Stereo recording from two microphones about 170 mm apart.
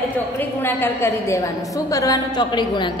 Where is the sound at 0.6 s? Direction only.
15° left (ahead or behind).